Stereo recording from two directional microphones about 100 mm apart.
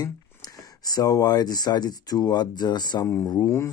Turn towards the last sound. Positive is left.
turn(degrees=35)  # may be behind; listen again after turning